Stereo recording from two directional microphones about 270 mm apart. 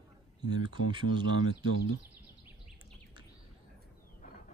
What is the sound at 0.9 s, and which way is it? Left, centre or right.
Speech, centre.